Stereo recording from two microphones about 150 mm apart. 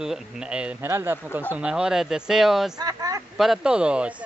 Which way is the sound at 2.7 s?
25° right (ahead or behind).